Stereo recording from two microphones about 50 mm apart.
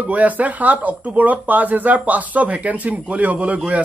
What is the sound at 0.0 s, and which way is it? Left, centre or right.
A man's voice, right.